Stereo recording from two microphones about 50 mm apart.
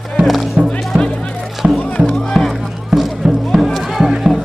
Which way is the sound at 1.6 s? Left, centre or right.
Centre.